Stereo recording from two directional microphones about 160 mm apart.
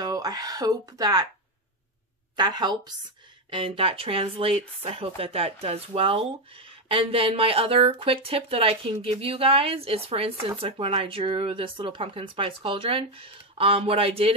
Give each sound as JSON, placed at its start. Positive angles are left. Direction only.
{"t": 0.0, "sound": "speech", "side_deg": -25}
{"t": 2.3, "sound": "a woman's voice", "side_deg": -25}